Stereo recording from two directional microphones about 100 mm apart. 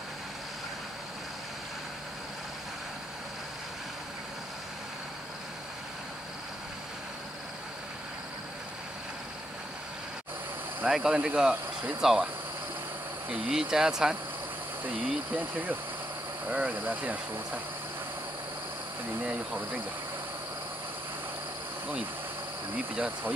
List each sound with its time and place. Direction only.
10.9 s speech: 5° right (ahead or behind)
13.5 s speech: 5° right (ahead or behind)
15.3 s speech: 20° right (ahead or behind)
19.2 s speech: 10° right (ahead or behind)
22.9 s speech: 15° right (ahead or behind)